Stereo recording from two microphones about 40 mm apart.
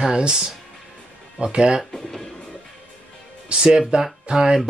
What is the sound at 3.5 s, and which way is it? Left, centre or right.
Speech, centre.